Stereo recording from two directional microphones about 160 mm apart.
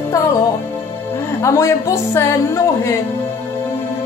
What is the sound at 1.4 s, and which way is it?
A woman's voice, 20° left (ahead or behind).